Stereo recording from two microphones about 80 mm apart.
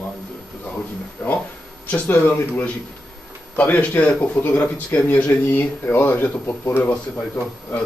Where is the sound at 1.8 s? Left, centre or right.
Left.